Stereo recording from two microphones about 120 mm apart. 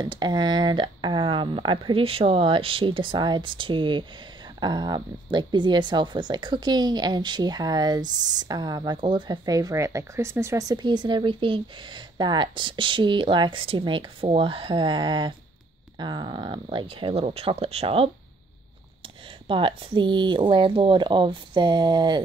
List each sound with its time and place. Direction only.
0.0 s speech: 40° right (ahead or behind); by 18.1 s 55° right (ahead or behind)
19.4 s speech: 45° right (ahead or behind)